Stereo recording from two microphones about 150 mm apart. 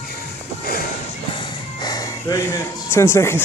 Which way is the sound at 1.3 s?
30° left (ahead or behind).